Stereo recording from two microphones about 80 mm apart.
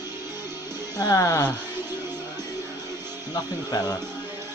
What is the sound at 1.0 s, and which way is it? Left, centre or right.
Speech, left.